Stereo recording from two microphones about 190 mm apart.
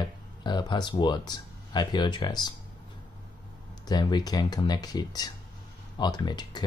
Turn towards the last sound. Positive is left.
turn(degrees=20)  # may be behind; listen again after turning